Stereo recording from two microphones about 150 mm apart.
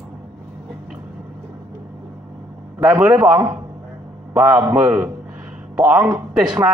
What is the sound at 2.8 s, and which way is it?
Speech, 10° right (ahead or behind).